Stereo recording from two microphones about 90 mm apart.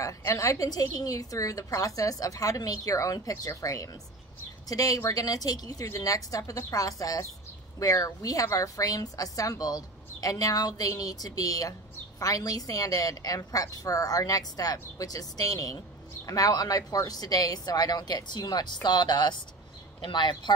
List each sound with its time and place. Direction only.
0.0 s a woman's voice: 35° left (ahead or behind); by 20.5 s 60° left (ahead or behind)